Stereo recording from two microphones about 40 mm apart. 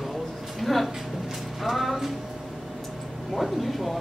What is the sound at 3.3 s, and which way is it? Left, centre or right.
Speech, centre.